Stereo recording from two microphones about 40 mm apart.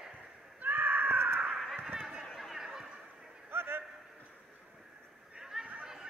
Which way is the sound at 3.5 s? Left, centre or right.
Right.